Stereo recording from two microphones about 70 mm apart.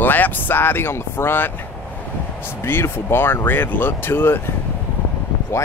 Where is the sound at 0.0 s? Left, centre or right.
Left.